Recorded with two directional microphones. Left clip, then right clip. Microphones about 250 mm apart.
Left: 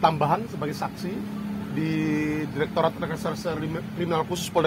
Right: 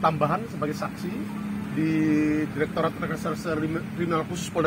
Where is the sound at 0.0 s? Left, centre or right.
Left.